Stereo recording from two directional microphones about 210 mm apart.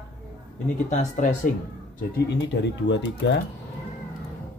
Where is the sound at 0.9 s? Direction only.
40° left (ahead or behind).